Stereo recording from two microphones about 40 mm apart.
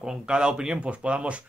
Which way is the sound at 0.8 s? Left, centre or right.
Right.